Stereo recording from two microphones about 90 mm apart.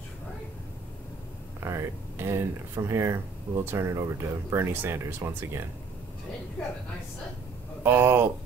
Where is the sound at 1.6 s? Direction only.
30° right (ahead or behind).